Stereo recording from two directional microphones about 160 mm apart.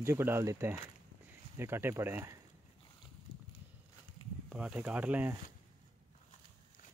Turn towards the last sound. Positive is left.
turn(degrees=-10)  # may be behind; listen again after turning